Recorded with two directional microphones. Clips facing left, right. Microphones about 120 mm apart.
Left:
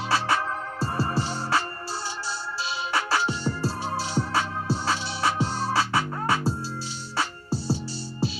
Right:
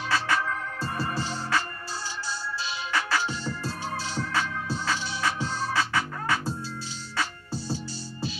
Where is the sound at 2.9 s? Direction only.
30° left (ahead or behind).